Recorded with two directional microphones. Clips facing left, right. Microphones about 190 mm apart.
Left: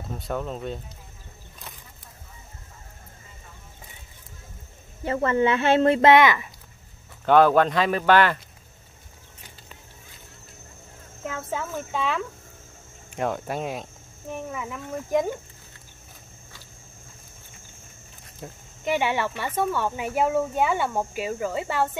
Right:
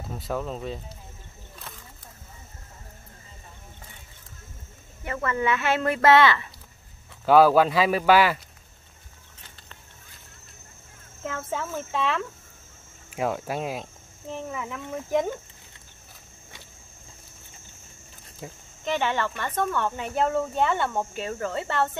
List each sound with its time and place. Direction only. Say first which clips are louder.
0.2 s speech: even; centre (ahead or behind)
5.0 s speech: left 5 dB; 30° left (ahead or behind)
7.2 s speech: even; 5° right (ahead or behind)
11.3 s speech: even; centre (ahead or behind)
18.4 s speech: even; 5° right (ahead or behind)
18.9 s speech: left 2 dB; 10° left (ahead or behind)